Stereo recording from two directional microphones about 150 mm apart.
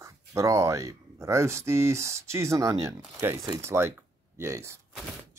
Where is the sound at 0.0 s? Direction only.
20° right (ahead or behind).